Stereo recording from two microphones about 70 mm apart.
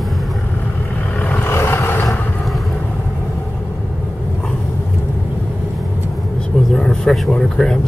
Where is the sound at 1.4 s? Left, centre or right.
Left.